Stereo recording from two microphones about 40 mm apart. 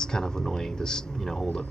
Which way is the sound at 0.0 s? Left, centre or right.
Centre.